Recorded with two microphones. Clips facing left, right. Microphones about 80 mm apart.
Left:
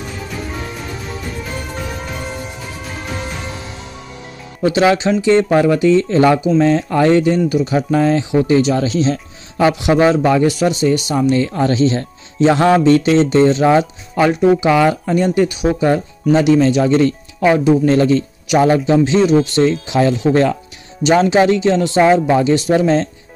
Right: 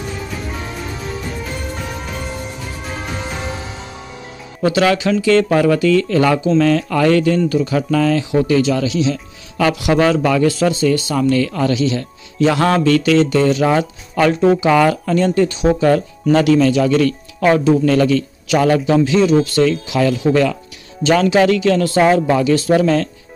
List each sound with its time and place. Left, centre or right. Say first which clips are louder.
4.6 s speech: left 1 dB; left
9.6 s speech: left 2 dB; left